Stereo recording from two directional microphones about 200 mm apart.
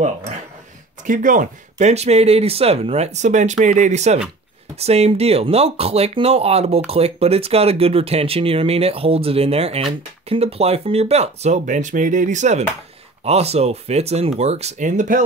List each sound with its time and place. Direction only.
1.0 s speech: 40° right (ahead or behind)